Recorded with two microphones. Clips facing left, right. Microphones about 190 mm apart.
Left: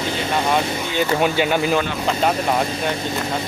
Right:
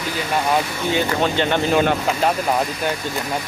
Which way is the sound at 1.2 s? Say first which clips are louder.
Left 1 dB; 10° left (ahead or behind).